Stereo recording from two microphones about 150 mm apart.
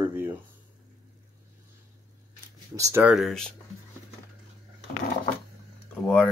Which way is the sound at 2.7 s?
20° right (ahead or behind).